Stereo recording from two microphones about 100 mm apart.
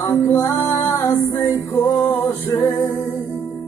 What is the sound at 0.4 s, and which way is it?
Music, 35° left (ahead or behind).